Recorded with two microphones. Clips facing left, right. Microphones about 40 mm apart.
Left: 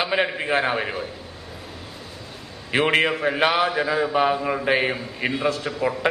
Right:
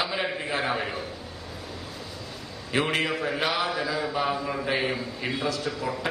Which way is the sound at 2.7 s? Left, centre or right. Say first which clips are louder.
Left 6 dB; left.